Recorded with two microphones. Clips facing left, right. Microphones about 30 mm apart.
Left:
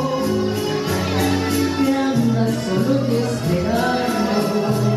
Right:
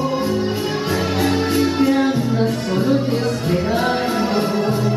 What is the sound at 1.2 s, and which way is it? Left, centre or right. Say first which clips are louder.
Music: right 2 dB; centre.